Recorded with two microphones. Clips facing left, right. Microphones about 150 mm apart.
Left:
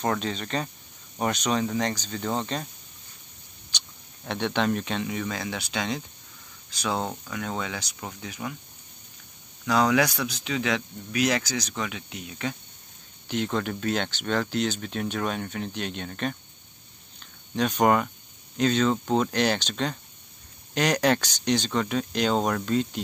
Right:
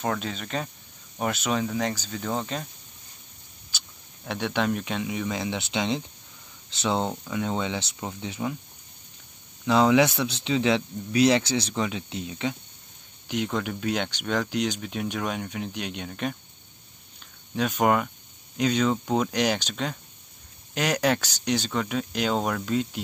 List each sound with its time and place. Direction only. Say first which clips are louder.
0.0 s speech: left 2 dB; 5° right (ahead or behind)
3.7 s a sound: left 1 dB; 5° right (ahead or behind)
4.3 s speech: left 1 dB; 5° right (ahead or behind); by 8.5 s 25° right (ahead or behind)
9.7 s speech: right 3 dB; 25° right (ahead or behind)
13.3 s speech: even; 10° right (ahead or behind)
17.6 s speech: left 1 dB; 5° right (ahead or behind)